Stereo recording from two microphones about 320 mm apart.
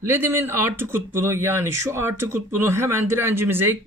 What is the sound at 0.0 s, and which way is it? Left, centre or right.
Speech, centre.